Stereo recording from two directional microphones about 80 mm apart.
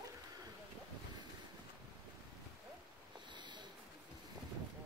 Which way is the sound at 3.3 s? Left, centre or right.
Right.